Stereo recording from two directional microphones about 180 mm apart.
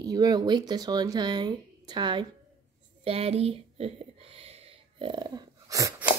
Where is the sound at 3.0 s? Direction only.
35° right (ahead or behind).